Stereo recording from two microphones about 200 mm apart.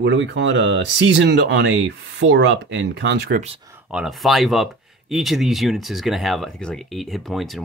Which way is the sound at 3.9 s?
Centre (ahead or behind).